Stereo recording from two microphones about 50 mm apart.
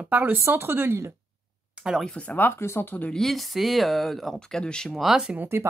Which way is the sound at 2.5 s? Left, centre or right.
Left.